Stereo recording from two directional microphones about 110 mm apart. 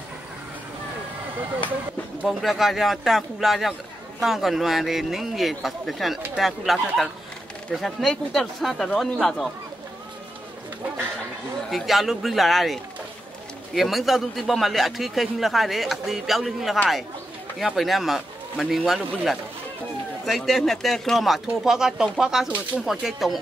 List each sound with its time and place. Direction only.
2.2 s a man's voice: centre (ahead or behind)
11.7 s a man's voice: centre (ahead or behind)